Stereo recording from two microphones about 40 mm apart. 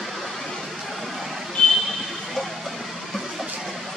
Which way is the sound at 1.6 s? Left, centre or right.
Centre.